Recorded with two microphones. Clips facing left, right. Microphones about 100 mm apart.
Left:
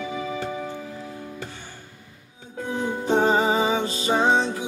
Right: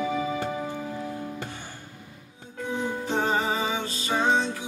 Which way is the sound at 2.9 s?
25° left (ahead or behind).